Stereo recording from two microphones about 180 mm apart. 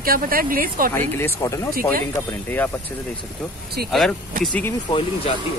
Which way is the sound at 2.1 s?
10° left (ahead or behind).